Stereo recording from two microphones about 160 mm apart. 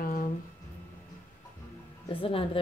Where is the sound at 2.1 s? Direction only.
35° left (ahead or behind).